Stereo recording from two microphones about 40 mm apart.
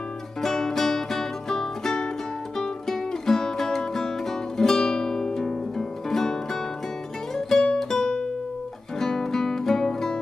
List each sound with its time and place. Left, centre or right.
0.4 s music: centre